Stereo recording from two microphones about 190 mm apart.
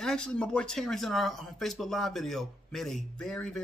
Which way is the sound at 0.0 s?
5° left (ahead or behind).